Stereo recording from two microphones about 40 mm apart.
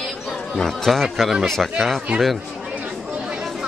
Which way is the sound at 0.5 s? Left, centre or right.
Centre.